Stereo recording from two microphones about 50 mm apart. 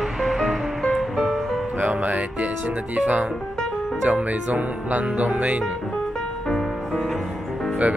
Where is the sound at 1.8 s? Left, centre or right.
Right.